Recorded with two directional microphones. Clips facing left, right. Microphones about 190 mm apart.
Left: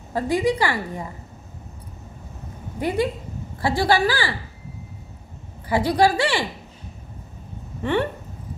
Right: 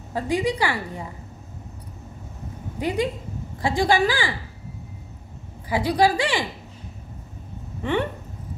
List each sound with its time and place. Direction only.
0.1 s a woman's voice: 15° right (ahead or behind)
2.8 s a woman's voice: 15° right (ahead or behind)
5.7 s a woman's voice: 10° right (ahead or behind)
7.8 s a woman's voice: 15° right (ahead or behind)